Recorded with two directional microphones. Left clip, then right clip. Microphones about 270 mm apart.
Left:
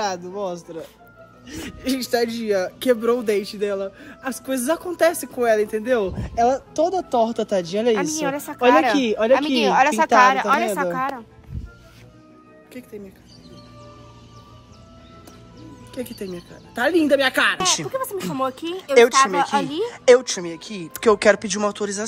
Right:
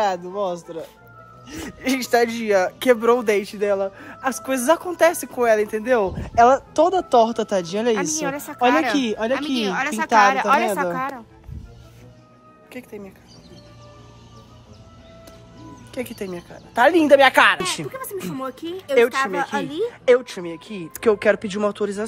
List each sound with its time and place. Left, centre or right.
0.0 s speech: centre
12.7 s speech: centre
15.9 s speech: centre